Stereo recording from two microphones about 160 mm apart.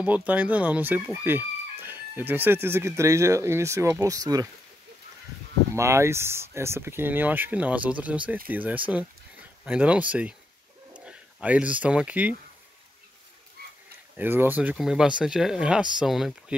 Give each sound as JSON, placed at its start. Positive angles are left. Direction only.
{"t": 0.0, "sound": "speech", "side_deg": -10}
{"t": 5.8, "sound": "speech", "side_deg": -15}
{"t": 13.6, "sound": "a sound", "side_deg": -70}
{"t": 14.1, "sound": "speech", "side_deg": -10}